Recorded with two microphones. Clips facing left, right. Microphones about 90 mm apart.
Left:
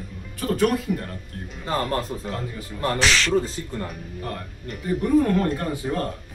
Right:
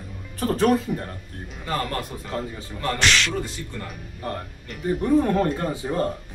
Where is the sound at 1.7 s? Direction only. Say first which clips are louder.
Left 3 dB; 35° left (ahead or behind).